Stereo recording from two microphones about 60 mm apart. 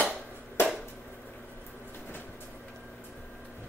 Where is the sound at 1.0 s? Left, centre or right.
Left.